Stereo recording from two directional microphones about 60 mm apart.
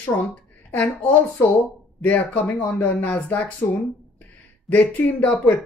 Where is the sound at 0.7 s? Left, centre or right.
Left.